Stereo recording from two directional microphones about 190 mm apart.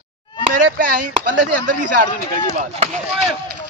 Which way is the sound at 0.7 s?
45° right (ahead or behind).